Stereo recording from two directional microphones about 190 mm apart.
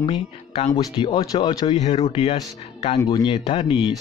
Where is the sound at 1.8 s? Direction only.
35° left (ahead or behind).